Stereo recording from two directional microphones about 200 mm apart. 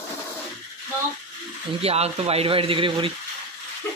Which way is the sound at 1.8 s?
30° right (ahead or behind).